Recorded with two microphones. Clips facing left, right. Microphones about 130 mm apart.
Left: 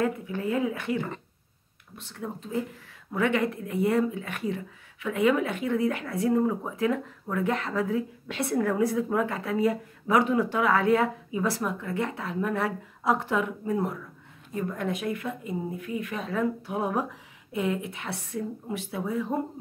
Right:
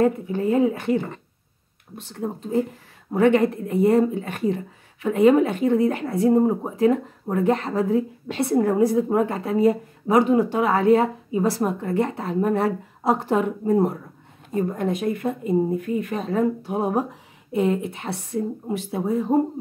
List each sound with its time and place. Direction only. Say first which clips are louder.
0.0 s a woman's voice: right 7 dB; 35° right (ahead or behind)
2.1 s a woman's voice: right 8 dB; 35° right (ahead or behind)